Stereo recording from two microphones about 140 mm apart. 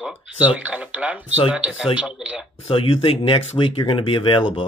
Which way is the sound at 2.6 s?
40° left (ahead or behind).